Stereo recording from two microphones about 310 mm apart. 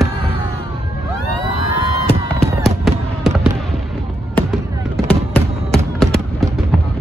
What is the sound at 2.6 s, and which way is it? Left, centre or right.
Fireworks, centre.